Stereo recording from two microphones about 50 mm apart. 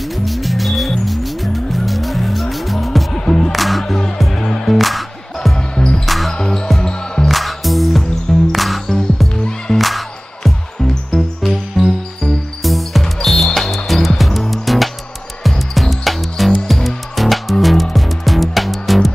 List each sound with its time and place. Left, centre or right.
0.0 s music: centre
3.1 s music: centre
3.5 s music: centre
3.8 s music: centre
5.6 s music: centre
6.0 s music: centre
6.3 s basketball bounce: centre
6.8 s music: centre
7.2 s music: centre